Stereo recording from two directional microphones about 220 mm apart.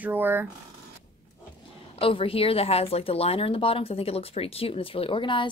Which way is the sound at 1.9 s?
25° left (ahead or behind).